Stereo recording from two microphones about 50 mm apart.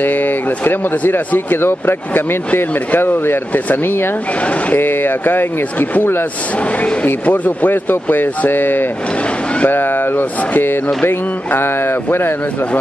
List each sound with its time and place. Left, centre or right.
0.0 s speech: left
4.4 s speech: left
4.7 s speech: left
6.8 s speech: left